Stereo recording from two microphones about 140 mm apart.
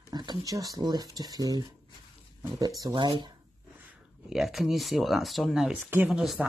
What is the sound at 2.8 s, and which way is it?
Speech, 30° right (ahead or behind).